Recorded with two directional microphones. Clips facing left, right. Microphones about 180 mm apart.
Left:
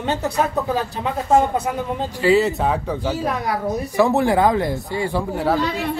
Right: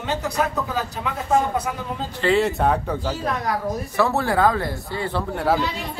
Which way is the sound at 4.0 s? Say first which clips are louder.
Left 3 dB; 15° left (ahead or behind).